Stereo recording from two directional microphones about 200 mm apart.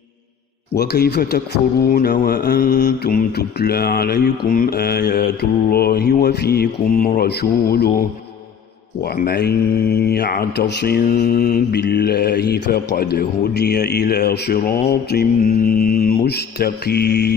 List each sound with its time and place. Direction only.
0.7 s speech: 55° left (ahead or behind)
9.0 s speech: 50° left (ahead or behind)
16.3 s mantra: 55° left (ahead or behind)